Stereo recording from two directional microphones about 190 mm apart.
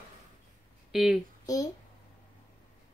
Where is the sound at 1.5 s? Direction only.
20° left (ahead or behind).